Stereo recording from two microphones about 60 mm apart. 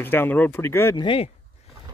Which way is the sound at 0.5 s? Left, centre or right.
Left.